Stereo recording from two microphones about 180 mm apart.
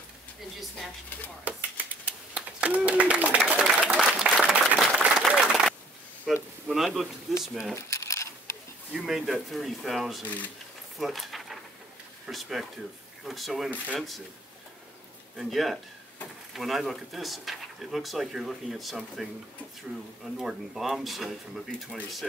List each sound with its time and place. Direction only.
0.6 s speech: centre (ahead or behind)
2.3 s applause: 5° right (ahead or behind)
6.3 s speech: centre (ahead or behind)
7.7 s a sound: 15° left (ahead or behind)
8.9 s speech: centre (ahead or behind)
11.0 s a sound: centre (ahead or behind)
12.3 s speech: centre (ahead or behind)
15.3 s speech: centre (ahead or behind)
20.3 s speech: centre (ahead or behind)